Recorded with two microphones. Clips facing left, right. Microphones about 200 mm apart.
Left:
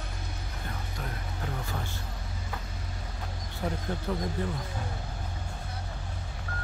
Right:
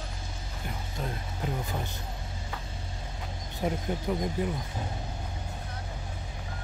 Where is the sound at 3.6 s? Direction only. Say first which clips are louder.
Right 3 dB; 20° right (ahead or behind).